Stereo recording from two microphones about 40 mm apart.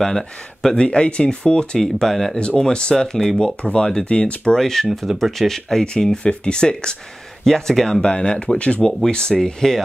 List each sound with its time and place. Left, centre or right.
0.0 s speech: centre
0.7 s speech: left
1.8 s speech: centre
2.3 s speech: left
3.8 s speech: left
4.6 s speech: centre
4.8 s speech: centre
6.2 s speech: left
7.4 s speech: centre
8.0 s speech: left
9.3 s speech: centre